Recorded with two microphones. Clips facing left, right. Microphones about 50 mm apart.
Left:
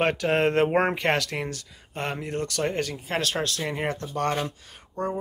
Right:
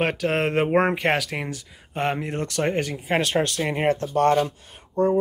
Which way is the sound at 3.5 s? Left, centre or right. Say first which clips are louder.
Right 6 dB; right.